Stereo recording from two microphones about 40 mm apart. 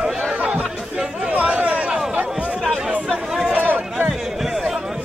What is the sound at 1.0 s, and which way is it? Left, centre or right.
Chatter, right.